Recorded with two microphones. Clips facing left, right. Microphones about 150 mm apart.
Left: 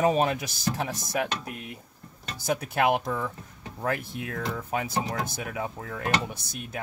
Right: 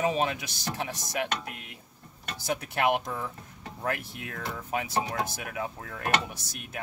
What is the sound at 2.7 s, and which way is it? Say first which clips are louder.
Speech: left 2 dB; 45° left (ahead or behind).